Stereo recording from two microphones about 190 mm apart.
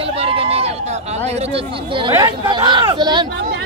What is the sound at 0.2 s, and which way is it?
Run, 30° right (ahead or behind).